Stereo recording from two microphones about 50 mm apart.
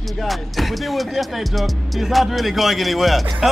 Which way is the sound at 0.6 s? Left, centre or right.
Centre.